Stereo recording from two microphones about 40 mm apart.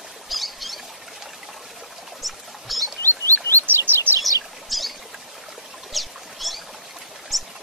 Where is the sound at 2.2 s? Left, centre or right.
Centre.